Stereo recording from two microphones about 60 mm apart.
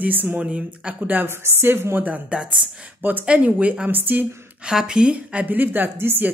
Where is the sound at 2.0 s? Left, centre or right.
Right.